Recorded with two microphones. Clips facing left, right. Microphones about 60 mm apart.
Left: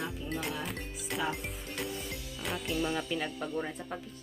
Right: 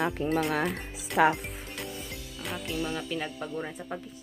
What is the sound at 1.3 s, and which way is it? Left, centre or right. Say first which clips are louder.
Speech: right 2 dB; centre.